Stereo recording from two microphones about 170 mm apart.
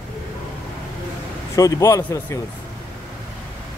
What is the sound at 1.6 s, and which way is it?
Speech, 20° left (ahead or behind).